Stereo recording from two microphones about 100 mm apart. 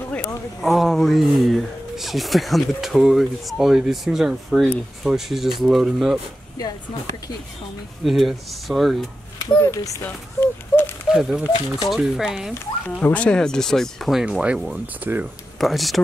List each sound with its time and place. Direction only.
0.6 s speech: centre (ahead or behind)
8.0 s speech: centre (ahead or behind)
9.6 s speech: 30° left (ahead or behind)
10.0 s a sound: 20° left (ahead or behind)
11.1 s speech: 5° right (ahead or behind)
12.9 s speech: 15° left (ahead or behind)
14.2 s speech: 10° right (ahead or behind)
15.6 s speech: centre (ahead or behind)